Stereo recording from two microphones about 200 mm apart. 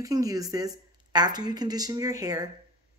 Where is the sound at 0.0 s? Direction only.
15° right (ahead or behind).